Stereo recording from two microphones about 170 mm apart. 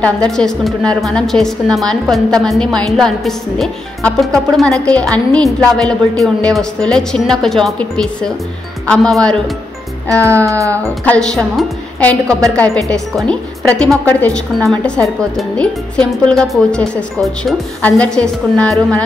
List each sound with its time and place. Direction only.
0.0 s a woman's voice: 5° left (ahead or behind)
10.4 s speech: 20° right (ahead or behind)
11.1 s a woman's voice: 5° left (ahead or behind)